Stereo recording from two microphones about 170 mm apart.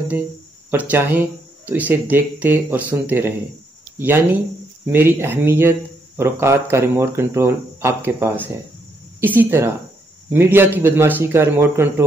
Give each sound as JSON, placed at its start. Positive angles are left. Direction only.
{"t": 0.7, "sound": "speech", "side_deg": -10}